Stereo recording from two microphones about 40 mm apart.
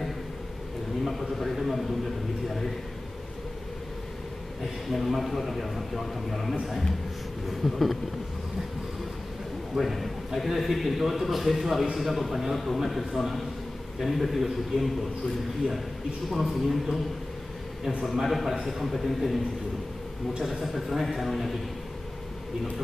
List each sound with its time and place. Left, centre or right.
1.0 s a sound: centre
4.8 s a man's voice: centre
7.6 s a man's voice: centre
9.8 s a man's voice: centre
16.3 s a man's voice: centre
18.2 s a man's voice: centre
20.5 s a man's voice: centre